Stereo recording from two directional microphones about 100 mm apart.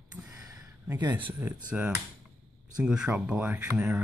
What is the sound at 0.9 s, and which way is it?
Speech, 50° right (ahead or behind).